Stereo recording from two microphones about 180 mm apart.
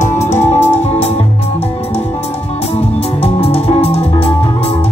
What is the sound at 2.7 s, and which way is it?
Music, 35° left (ahead or behind).